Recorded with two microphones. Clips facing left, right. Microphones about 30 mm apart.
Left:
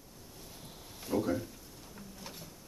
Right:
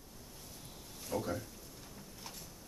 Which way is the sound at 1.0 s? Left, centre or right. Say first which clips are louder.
Left 6 dB; centre.